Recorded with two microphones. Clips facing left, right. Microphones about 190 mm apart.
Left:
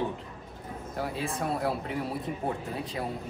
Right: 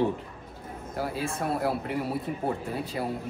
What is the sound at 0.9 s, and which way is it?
Speech, centre (ahead or behind).